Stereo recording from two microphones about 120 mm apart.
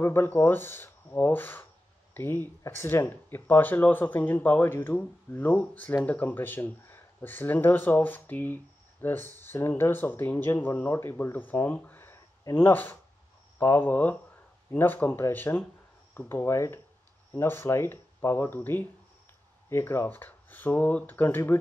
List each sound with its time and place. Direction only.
0.0 s speech: 20° left (ahead or behind)